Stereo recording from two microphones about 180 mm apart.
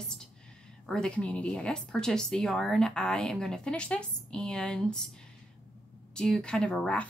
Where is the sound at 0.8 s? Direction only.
5° left (ahead or behind).